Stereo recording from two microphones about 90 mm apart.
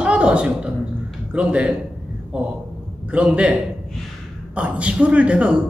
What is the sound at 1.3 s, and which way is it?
Speech, 15° right (ahead or behind).